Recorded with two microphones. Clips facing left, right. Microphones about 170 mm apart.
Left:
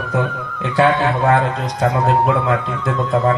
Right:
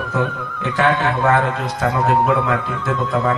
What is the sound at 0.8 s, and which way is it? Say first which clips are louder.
Music: left 3 dB; 35° left (ahead or behind).